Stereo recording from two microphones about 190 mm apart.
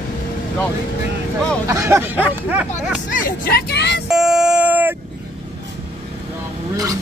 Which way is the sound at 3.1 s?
50° left (ahead or behind).